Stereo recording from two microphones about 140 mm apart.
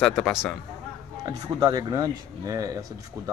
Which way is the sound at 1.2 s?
30° right (ahead or behind).